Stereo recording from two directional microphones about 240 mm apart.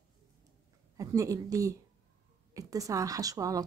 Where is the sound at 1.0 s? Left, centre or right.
Centre.